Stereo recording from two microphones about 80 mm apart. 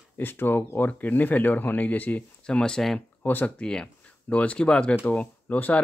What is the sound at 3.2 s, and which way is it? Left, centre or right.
Speech, left.